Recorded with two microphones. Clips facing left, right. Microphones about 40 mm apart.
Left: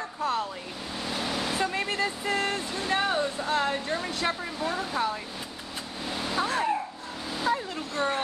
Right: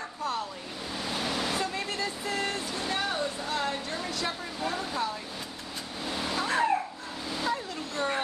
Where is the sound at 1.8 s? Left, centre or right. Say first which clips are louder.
Left 4 dB; left.